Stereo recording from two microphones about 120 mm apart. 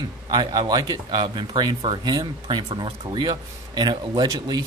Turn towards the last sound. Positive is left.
turn(degrees=-30)  # may be behind; listen again after turning